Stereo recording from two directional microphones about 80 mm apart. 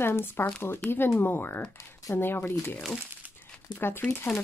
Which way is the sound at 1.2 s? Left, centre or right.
Left.